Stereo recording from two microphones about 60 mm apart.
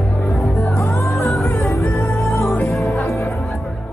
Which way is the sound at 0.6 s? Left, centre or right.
Left.